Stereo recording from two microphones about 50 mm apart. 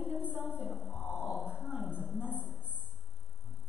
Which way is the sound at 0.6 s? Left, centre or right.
Centre.